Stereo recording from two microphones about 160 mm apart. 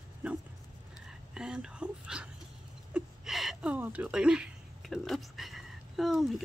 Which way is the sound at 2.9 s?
Centre (ahead or behind).